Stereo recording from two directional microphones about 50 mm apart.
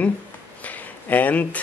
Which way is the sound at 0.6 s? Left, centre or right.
Left.